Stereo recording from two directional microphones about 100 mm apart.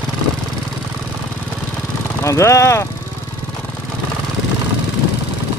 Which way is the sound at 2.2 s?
30° left (ahead or behind).